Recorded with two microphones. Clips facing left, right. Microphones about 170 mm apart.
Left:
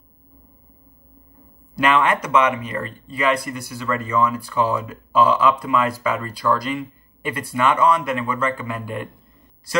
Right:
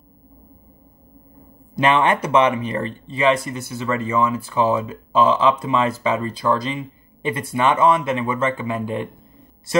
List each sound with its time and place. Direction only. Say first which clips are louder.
1.8 s speech: right 1 dB; 25° right (ahead or behind)